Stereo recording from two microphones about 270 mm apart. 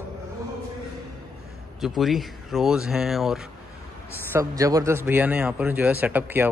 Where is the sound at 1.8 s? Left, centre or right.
Centre.